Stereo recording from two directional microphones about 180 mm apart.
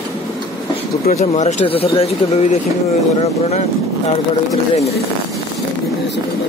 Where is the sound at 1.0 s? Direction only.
40° left (ahead or behind).